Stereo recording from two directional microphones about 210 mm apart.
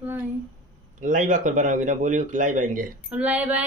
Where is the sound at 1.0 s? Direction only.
35° right (ahead or behind).